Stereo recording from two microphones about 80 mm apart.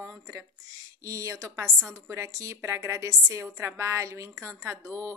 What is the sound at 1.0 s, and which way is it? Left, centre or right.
Speech, right.